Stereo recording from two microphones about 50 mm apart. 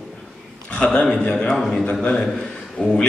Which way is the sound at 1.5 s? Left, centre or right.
Centre.